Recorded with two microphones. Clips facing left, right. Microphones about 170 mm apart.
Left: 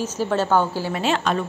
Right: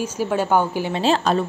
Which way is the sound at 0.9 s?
35° right (ahead or behind).